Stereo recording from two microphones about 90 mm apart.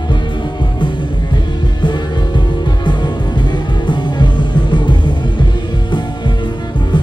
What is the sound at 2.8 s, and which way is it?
Music, 60° left (ahead or behind).